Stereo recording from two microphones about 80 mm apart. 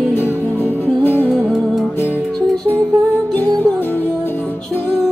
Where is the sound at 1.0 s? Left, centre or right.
Left.